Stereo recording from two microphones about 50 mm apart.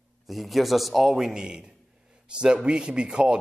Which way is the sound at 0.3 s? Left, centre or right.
Centre.